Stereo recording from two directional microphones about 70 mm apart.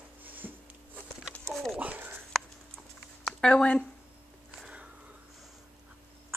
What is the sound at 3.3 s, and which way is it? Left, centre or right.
Speech, centre.